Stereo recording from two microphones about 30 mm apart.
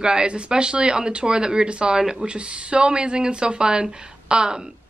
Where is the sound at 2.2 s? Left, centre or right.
Right.